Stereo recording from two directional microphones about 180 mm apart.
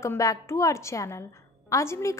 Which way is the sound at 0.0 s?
15° left (ahead or behind).